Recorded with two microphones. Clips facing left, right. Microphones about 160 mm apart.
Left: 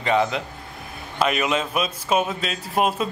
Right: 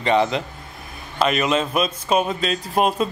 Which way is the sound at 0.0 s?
5° left (ahead or behind).